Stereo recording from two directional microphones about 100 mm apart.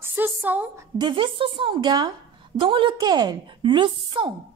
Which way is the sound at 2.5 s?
60° right (ahead or behind).